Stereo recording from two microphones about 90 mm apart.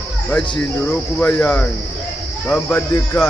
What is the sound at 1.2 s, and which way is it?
Speech, 20° left (ahead or behind).